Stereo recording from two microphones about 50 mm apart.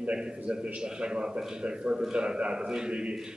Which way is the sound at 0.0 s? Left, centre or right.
Centre.